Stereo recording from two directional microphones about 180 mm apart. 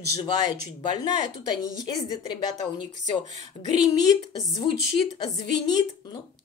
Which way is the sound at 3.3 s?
40° right (ahead or behind).